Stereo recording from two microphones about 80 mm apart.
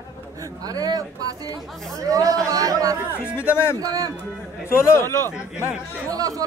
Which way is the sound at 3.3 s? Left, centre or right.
Left.